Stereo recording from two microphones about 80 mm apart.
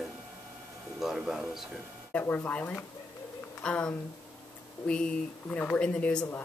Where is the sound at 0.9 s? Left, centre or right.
Centre.